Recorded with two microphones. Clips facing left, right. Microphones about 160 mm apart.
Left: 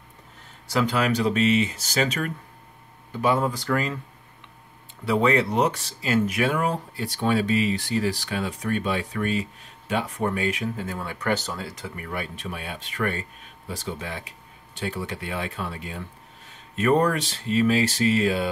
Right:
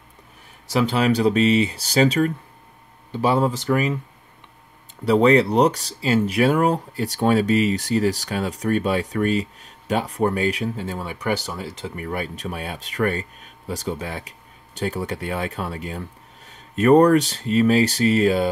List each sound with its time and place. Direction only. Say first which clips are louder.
0.7 s speech: right 4 dB; 20° right (ahead or behind)
5.0 s speech: right 6 dB; 35° right (ahead or behind); by 11.6 s 10° right (ahead or behind)
11.6 s speech: right 4 dB; 25° right (ahead or behind)
12.1 s speech: right 4 dB; 40° right (ahead or behind)